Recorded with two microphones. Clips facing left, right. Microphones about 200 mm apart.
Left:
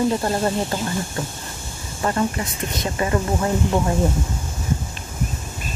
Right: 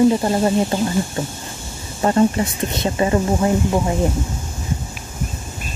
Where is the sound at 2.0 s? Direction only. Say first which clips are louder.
Right 6 dB; 25° right (ahead or behind).